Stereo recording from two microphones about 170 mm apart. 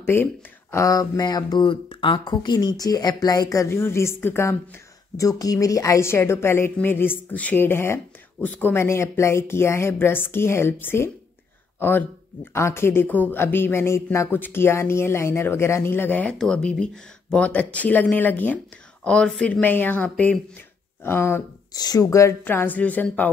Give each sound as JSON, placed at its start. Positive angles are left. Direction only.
{"t": 0.1, "sound": "a woman's voice", "side_deg": 15}
{"t": 12.5, "sound": "a woman's voice", "side_deg": 15}